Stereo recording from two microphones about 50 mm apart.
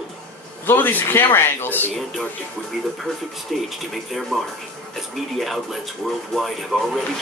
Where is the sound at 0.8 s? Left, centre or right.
Left.